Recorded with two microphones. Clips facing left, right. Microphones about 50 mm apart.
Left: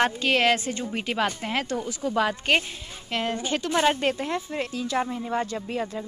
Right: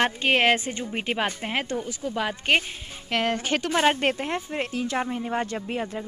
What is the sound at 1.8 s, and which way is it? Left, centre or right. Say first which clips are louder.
Speech: left 3 dB; centre.